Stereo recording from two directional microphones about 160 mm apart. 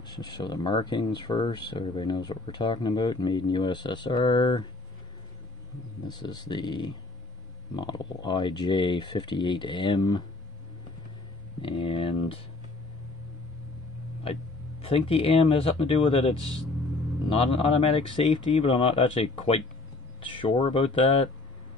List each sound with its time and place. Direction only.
0.0 s speech: 25° left (ahead or behind)
6.0 s speech: 25° left (ahead or behind)
11.6 s speech: 30° left (ahead or behind)
14.8 s speech: 35° left (ahead or behind)